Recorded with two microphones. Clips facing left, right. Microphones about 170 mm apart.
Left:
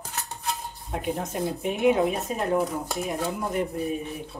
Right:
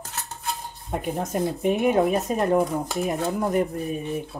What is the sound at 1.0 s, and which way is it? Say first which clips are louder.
Speech: right 2 dB; 45° right (ahead or behind).